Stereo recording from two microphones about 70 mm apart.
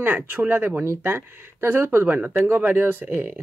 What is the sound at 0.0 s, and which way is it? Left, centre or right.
Speech, right.